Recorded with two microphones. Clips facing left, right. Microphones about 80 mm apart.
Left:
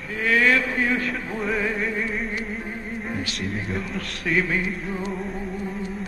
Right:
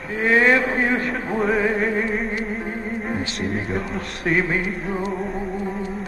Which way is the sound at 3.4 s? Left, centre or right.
Centre.